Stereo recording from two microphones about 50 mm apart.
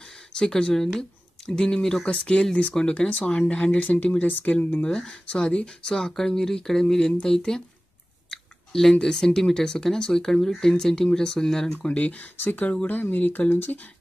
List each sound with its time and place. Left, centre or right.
0.4 s speech: centre; by 4.8 s left
4.8 s speech: centre
5.9 s speech: centre
11.8 s speech: left